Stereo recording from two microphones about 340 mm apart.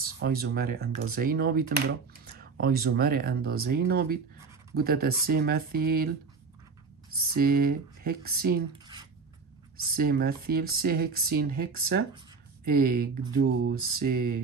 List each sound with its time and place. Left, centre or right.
0.2 s speech: right
7.3 s speech: right
9.9 s speech: right